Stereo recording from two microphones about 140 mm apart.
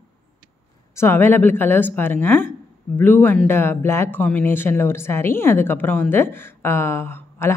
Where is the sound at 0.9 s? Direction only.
15° left (ahead or behind).